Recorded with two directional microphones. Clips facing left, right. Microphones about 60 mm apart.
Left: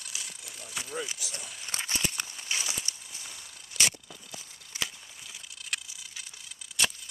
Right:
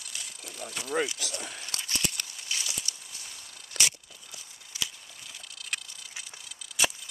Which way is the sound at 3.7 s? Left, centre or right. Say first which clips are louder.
Left 1 dB; right.